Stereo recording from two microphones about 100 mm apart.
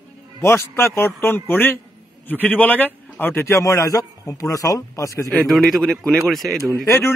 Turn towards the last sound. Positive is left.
turn(degrees=25)  # may be behind; listen again after turning